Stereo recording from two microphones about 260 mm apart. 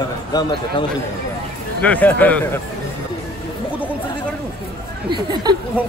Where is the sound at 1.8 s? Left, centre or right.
Centre.